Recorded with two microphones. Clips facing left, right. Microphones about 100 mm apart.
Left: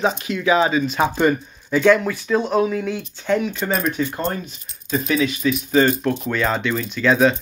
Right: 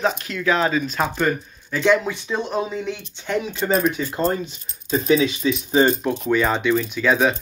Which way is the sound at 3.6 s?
5° right (ahead or behind).